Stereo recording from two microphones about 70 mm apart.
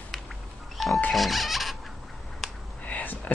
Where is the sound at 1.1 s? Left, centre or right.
Centre.